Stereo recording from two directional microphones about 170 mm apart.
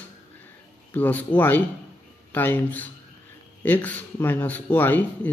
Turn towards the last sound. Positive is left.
turn(degrees=10)  # may be behind; listen again after turning